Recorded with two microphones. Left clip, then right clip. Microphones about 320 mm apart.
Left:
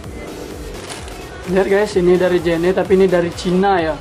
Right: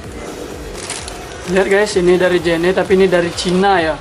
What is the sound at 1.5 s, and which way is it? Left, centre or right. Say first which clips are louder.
Speech: right 2 dB; centre.